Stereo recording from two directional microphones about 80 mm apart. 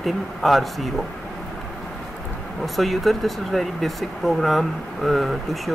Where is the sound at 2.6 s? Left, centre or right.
Centre.